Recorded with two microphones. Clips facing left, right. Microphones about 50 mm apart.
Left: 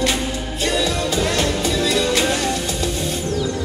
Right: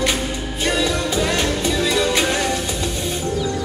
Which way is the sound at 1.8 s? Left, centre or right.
Centre.